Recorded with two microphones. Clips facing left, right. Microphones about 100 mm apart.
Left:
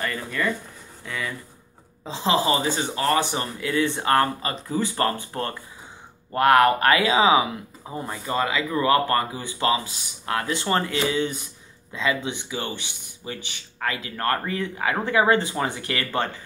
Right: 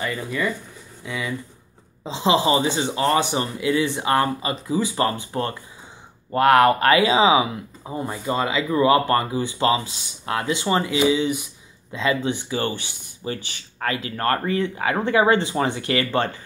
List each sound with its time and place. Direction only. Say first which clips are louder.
0.0 s speech: right 1 dB; 10° right (ahead or behind)
12.0 s speech: right 3 dB; 35° right (ahead or behind)